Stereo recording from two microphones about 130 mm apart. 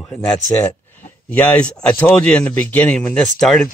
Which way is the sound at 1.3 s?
10° left (ahead or behind).